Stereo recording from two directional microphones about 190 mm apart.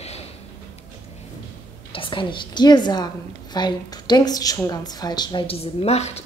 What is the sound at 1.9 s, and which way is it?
A woman's voice, 25° left (ahead or behind).